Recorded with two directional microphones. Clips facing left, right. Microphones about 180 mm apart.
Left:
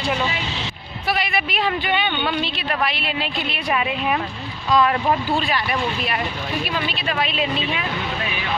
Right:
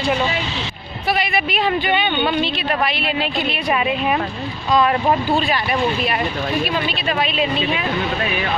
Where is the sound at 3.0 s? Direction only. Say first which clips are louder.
Right 4 dB; 55° right (ahead or behind).